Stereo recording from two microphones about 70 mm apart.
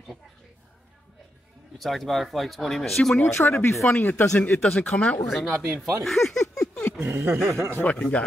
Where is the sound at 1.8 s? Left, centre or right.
Centre.